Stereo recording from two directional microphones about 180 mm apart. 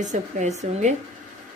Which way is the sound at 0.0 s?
40° right (ahead or behind).